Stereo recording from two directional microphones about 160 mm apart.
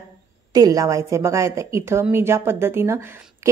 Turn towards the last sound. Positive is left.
turn(degrees=-15)  # may be behind; listen again after turning